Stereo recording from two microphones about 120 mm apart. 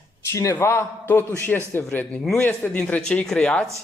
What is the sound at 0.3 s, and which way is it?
A man's voice, 25° left (ahead or behind).